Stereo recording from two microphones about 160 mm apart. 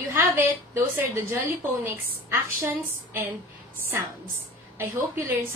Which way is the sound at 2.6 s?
15° right (ahead or behind).